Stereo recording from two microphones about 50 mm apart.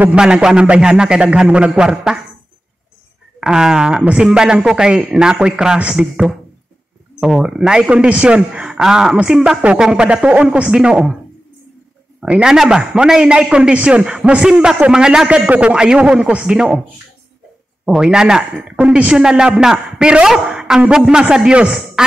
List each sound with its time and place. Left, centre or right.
0.1 s a man's voice: centre
3.3 s a man's voice: centre
12.2 s a woman's voice: centre
17.8 s a man's voice: centre